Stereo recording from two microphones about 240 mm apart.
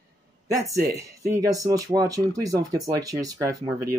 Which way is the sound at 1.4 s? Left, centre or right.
Centre.